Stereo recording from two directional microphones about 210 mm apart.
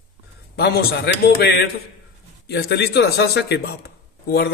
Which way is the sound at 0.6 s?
50° left (ahead or behind).